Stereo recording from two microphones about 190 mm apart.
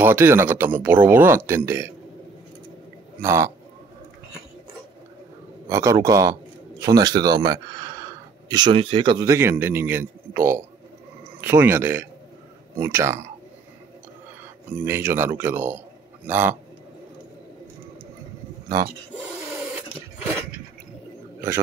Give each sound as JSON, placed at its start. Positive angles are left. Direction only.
{"t": 0.0, "sound": "speech", "side_deg": -10}
{"t": 3.2, "sound": "speech", "side_deg": -15}
{"t": 5.7, "sound": "speech", "side_deg": -15}
{"t": 14.7, "sound": "speech", "side_deg": -10}